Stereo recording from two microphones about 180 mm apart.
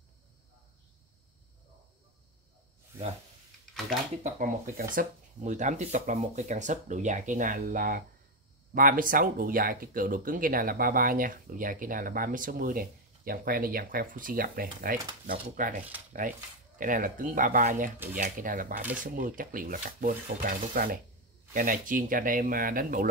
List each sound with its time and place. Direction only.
4.2 s speech: 45° right (ahead or behind)